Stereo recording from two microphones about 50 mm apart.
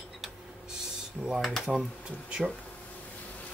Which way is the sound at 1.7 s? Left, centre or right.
Right.